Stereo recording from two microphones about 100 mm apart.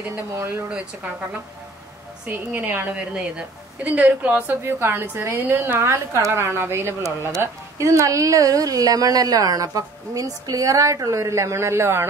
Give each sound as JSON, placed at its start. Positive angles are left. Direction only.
{"t": 0.3, "sound": "a woman's voice", "side_deg": -25}
{"t": 0.7, "sound": "speech", "side_deg": -10}
{"t": 2.3, "sound": "a woman's voice", "side_deg": -20}